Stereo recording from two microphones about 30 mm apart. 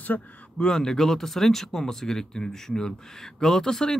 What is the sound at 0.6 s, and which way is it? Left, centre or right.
Speech, left.